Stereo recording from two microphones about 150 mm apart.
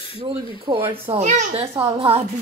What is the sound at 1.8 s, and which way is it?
Speech, 40° right (ahead or behind).